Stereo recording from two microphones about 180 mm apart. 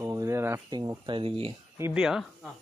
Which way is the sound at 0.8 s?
25° right (ahead or behind).